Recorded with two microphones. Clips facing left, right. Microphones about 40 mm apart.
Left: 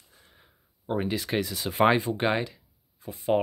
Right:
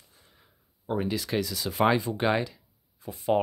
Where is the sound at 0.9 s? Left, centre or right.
Left.